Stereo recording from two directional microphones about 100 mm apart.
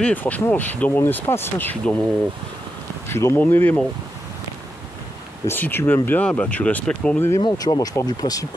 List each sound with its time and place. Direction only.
0.0 s speech: 15° left (ahead or behind)
3.1 s speech: 25° left (ahead or behind)
5.5 s speech: 20° left (ahead or behind)
7.2 s speech: 25° left (ahead or behind)
7.4 s speech: 40° left (ahead or behind)